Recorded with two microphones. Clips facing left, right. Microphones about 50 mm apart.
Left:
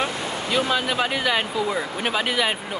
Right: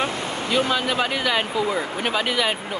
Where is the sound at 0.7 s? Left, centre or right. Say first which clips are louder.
Even; centre.